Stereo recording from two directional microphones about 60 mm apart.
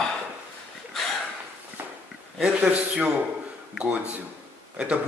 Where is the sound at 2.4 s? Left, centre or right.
Centre.